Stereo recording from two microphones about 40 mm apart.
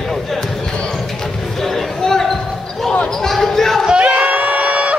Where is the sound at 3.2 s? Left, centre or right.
Centre.